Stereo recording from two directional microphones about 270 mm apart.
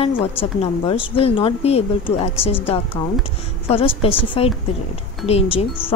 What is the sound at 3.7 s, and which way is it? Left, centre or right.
A woman's voice, left.